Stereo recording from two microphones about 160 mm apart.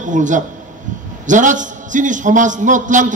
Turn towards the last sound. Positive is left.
turn(degrees=-50)  # may be behind; listen again after turning